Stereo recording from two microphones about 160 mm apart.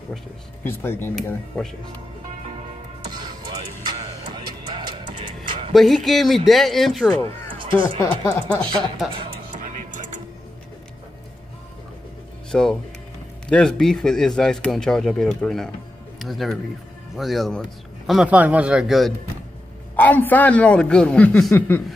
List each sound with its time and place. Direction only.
0.7 s a man's voice: 15° left (ahead or behind)
3.0 s music: 30° right (ahead or behind)
5.7 s speech: centre (ahead or behind)
8.0 s speech: 20° left (ahead or behind)
9.1 s music: 35° right (ahead or behind)
9.5 s music: 55° right (ahead or behind)
12.4 s speech: 5° left (ahead or behind)
20.0 s a man's voice: 10° left (ahead or behind)